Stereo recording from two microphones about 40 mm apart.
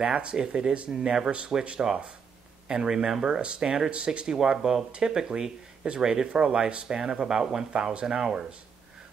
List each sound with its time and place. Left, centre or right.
0.1 s speech: right
0.4 s speech: centre
1.5 s speech: right
4.3 s speech: centre